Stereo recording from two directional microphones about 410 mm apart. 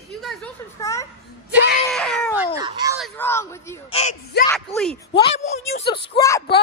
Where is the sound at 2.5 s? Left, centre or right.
Centre.